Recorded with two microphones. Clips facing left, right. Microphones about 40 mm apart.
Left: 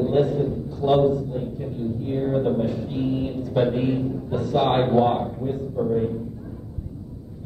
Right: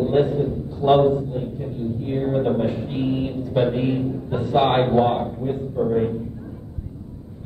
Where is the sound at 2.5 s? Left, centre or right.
Right.